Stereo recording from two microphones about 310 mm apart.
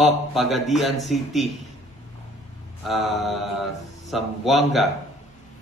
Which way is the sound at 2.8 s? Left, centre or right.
Centre.